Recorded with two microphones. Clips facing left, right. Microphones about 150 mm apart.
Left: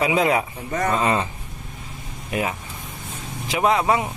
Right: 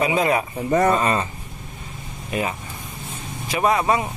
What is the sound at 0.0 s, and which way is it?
Speech, 15° left (ahead or behind).